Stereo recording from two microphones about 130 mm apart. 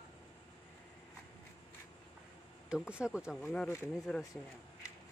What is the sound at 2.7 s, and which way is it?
Speech, 10° right (ahead or behind).